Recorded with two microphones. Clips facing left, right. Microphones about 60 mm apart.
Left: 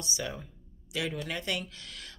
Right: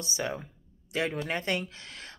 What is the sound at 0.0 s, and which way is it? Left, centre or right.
Speech, right.